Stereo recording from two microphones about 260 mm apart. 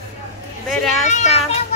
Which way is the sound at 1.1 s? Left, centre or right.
Left.